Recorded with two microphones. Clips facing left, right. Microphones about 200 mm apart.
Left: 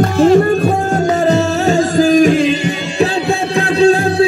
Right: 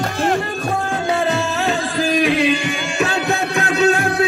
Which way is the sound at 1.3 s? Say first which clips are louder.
Left 7 dB; 45° left (ahead or behind).